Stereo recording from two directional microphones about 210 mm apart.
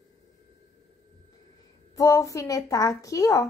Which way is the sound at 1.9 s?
15° left (ahead or behind).